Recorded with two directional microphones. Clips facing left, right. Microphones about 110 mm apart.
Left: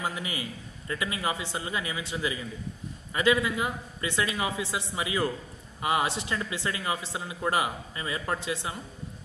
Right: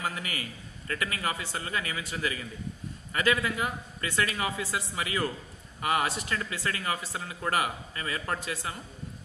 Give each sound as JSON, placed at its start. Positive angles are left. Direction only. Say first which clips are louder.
{"t": 0.0, "sound": "speech", "louder": "left 2 dB", "side_deg": 20}